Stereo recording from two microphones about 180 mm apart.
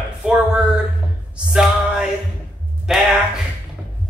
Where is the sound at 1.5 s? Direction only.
5° right (ahead or behind).